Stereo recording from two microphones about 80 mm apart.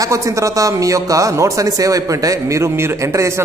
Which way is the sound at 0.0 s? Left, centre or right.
Right.